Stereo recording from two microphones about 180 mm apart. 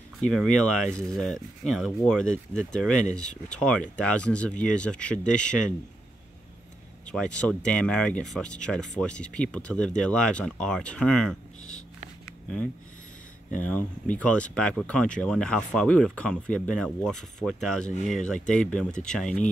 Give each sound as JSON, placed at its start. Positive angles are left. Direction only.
{"t": 0.3, "sound": "speech", "side_deg": 0}
{"t": 7.1, "sound": "speech", "side_deg": 5}
{"t": 14.1, "sound": "speech", "side_deg": 5}